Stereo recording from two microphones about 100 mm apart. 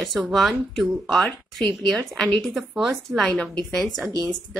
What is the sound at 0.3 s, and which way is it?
Speech, centre (ahead or behind).